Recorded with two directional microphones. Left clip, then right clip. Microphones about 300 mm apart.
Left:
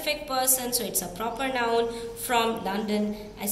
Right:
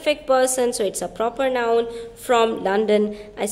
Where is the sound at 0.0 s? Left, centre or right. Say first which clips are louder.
Right 9 dB; right.